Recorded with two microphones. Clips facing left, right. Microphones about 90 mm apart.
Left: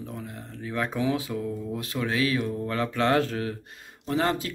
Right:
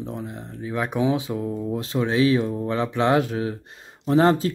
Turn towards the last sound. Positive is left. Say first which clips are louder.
# right 8 dB
turn(degrees=-35)  # may be behind; listen again after turning